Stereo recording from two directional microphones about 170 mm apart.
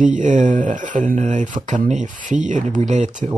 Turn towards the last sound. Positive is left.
turn(degrees=-45)  # may be behind; listen again after turning